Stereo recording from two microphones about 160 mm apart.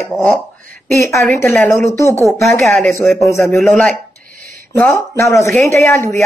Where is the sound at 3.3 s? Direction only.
15° left (ahead or behind).